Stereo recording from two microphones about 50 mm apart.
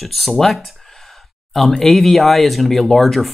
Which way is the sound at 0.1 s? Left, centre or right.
Centre.